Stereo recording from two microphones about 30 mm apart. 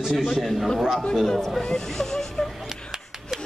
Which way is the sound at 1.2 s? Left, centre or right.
Centre.